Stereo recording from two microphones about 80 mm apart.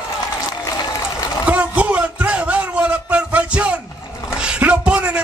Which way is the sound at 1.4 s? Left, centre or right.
Centre.